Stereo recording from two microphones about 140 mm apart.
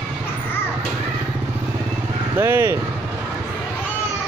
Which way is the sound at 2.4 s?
15° right (ahead or behind).